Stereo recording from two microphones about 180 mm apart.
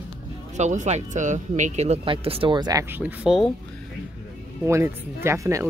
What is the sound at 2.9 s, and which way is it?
Speech, 5° right (ahead or behind).